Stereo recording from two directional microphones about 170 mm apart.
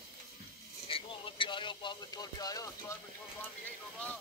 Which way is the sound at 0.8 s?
30° left (ahead or behind).